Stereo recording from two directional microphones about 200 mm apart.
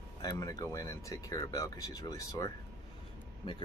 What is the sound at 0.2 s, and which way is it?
Speech, 20° left (ahead or behind).